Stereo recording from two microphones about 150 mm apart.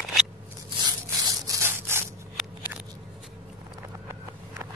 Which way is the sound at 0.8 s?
25° right (ahead or behind).